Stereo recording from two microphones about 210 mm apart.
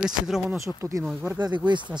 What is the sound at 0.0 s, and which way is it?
Speech, centre (ahead or behind).